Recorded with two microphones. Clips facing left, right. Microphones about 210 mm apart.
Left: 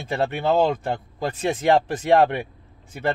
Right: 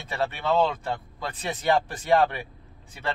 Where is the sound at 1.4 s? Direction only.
45° left (ahead or behind).